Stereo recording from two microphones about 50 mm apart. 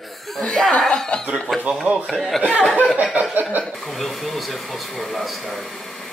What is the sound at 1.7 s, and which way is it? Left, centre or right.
Speech, centre.